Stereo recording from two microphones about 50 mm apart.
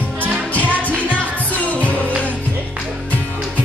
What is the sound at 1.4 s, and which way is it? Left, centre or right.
Music, left.